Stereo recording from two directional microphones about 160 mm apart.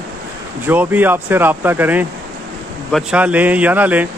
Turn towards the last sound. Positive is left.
turn(degrees=-10)  # may be behind; listen again after turning